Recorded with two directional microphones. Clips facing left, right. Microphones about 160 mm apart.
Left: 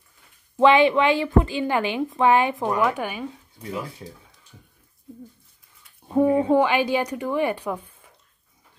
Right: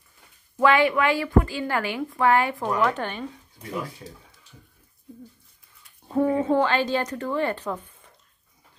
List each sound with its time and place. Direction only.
0.6 s a woman's voice: 20° left (ahead or behind)
6.0 s a woman's voice: 15° left (ahead or behind)